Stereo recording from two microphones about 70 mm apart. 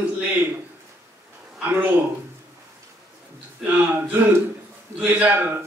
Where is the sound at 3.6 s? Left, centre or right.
Right.